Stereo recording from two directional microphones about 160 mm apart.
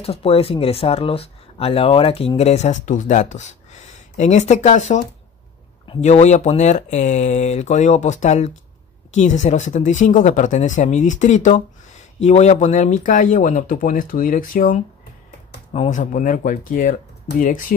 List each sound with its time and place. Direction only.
0.0 s speech: 40° left (ahead or behind); by 14.8 s 55° left (ahead or behind)
15.7 s speech: 45° left (ahead or behind)